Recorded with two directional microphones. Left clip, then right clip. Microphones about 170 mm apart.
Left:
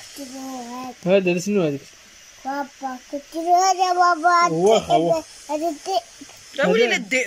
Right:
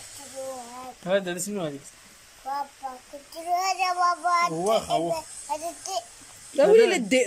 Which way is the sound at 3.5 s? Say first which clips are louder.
Left 8 dB; 50° left (ahead or behind).